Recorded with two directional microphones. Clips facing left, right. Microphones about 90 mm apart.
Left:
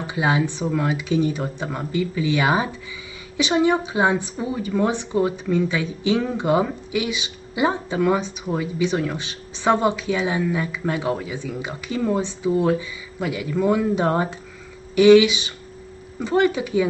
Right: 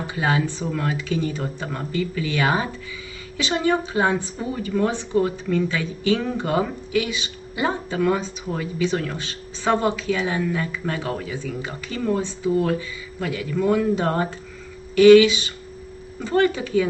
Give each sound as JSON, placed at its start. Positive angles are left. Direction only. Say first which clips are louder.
{"t": 0.0, "sound": "a woman's voice", "louder": "left 1 dB", "side_deg": 15}